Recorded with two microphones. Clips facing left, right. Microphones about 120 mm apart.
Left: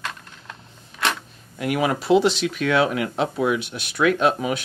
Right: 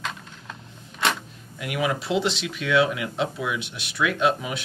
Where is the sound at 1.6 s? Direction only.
45° left (ahead or behind).